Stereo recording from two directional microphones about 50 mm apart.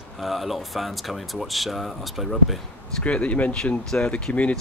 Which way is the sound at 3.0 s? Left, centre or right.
Left.